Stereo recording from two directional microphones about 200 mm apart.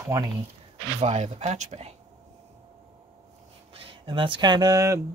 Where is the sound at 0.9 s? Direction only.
35° right (ahead or behind).